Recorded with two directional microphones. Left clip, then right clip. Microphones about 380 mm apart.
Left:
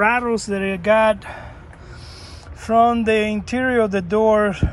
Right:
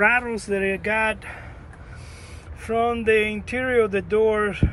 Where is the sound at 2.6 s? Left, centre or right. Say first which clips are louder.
Left 5 dB; centre.